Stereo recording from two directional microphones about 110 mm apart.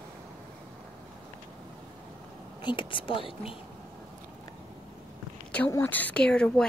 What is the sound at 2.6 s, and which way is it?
Speech, 50° left (ahead or behind).